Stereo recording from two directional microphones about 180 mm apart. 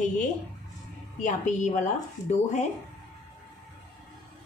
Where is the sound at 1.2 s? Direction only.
40° left (ahead or behind).